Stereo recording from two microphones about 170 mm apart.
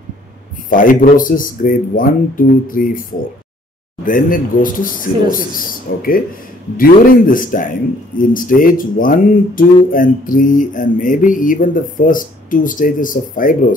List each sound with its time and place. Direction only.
0.7 s a man's voice: 55° left (ahead or behind)